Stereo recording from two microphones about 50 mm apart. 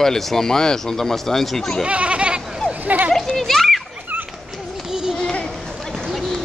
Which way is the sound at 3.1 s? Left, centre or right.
Centre.